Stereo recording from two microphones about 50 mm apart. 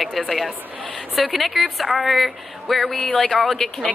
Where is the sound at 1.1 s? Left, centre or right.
Centre.